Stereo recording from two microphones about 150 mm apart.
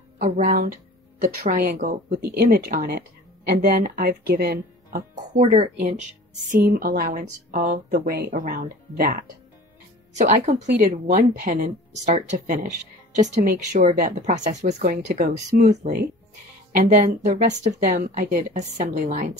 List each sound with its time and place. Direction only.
0.2 s speech: 65° right (ahead or behind)
1.4 s speech: 80° right
5.4 s speech: 50° right (ahead or behind)
6.5 s speech: 80° right
10.1 s speech: 50° right (ahead or behind)
13.5 s speech: 90° right
13.9 s speech: 60° right (ahead or behind)
18.1 s speech: 65° right (ahead or behind)